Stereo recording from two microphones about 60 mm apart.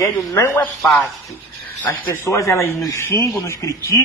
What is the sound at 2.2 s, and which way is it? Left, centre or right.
A man's voice, left.